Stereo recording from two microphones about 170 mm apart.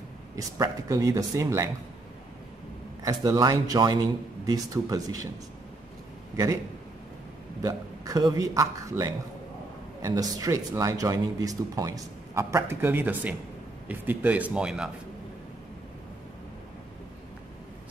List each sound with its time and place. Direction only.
0.4 s speech: 20° right (ahead or behind)
3.0 s speech: 20° right (ahead or behind)
6.3 s speech: 20° right (ahead or behind)
7.6 s speech: 20° right (ahead or behind); by 14.9 s 5° right (ahead or behind)